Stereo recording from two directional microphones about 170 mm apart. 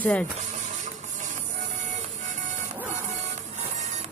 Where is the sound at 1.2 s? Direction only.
45° right (ahead or behind).